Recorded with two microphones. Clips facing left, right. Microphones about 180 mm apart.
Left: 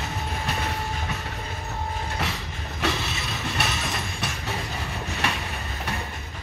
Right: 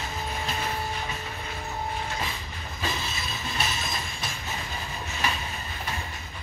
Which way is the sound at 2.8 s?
70° left (ahead or behind).